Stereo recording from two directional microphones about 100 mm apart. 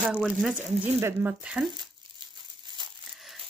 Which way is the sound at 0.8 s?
20° right (ahead or behind).